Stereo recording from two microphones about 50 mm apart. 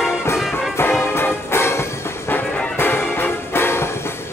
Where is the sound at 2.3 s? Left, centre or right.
Left.